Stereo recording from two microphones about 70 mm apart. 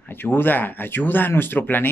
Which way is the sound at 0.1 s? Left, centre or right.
Left.